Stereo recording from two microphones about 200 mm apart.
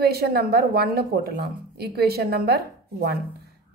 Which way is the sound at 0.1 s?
50° right (ahead or behind).